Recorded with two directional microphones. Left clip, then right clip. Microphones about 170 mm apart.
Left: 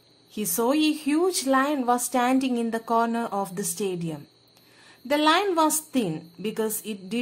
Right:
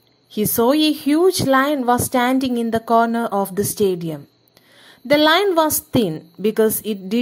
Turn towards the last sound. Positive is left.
turn(degrees=-35)  # may be behind; listen again after turning